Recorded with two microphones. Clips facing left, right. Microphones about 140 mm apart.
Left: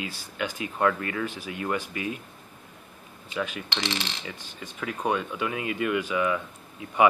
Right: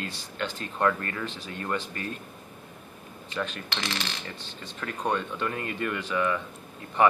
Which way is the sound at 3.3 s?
10° left (ahead or behind).